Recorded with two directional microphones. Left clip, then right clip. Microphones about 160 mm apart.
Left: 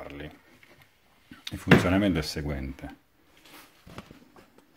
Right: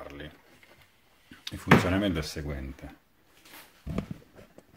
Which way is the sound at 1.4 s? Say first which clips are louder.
Left 1 dB; 20° left (ahead or behind).